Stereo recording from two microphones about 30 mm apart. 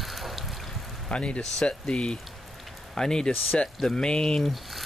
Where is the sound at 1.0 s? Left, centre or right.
Left.